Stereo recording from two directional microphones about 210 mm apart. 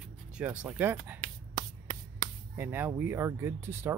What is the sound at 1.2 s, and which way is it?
Finger snapping, 20° right (ahead or behind).